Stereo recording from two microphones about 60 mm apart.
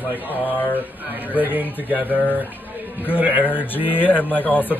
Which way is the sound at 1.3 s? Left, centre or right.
Right.